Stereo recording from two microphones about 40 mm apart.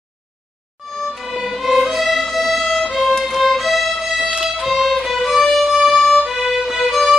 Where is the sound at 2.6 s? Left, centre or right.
Centre.